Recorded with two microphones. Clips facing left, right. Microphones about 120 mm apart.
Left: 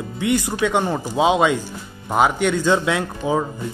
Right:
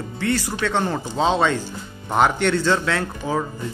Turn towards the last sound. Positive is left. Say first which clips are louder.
# left 3 dB
turn(degrees=15)  # may be behind; listen again after turning